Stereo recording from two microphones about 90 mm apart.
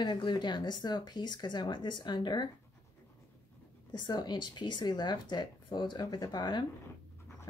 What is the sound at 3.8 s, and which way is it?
Speech, 50° left (ahead or behind).